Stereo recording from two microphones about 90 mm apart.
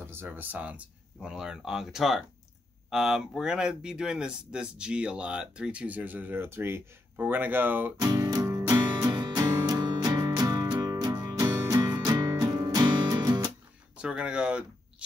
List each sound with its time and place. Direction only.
0.0 s speech: 25° right (ahead or behind)
8.0 s music: 45° right (ahead or behind)
13.2 s music: 45° right (ahead or behind)
13.9 s speech: 10° right (ahead or behind)